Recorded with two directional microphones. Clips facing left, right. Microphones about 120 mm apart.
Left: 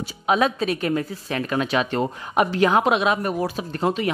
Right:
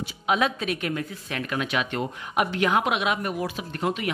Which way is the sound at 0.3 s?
35° left (ahead or behind).